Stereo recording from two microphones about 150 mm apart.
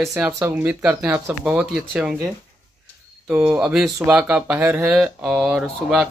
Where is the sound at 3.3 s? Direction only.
10° right (ahead or behind).